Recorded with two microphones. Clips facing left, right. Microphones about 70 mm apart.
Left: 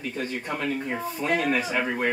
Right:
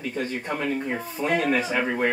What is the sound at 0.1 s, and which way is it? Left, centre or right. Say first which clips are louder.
Speech: right 2 dB; centre.